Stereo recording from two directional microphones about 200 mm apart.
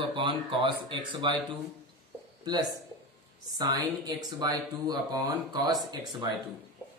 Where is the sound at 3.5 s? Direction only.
20° right (ahead or behind).